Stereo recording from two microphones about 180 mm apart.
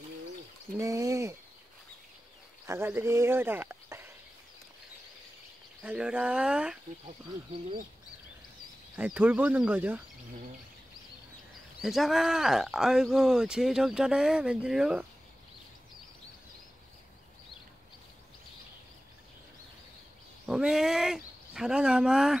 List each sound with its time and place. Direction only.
0.7 s speech: 20° right (ahead or behind)
2.6 s speech: 15° right (ahead or behind)
5.8 s speech: 5° right (ahead or behind)
8.9 s speech: 10° right (ahead or behind)
11.8 s speech: centre (ahead or behind)
20.4 s speech: centre (ahead or behind)